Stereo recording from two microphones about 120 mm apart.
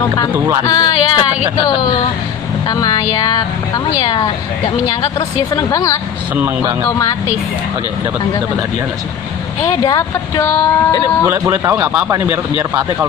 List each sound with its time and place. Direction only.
0.7 s a woman's voice: 40° left (ahead or behind)
2.7 s a woman's voice: 35° left (ahead or behind)
5.5 s speech: 30° left (ahead or behind)
9.7 s a woman's voice: 30° left (ahead or behind)
11.2 s a man's voice: 25° right (ahead or behind)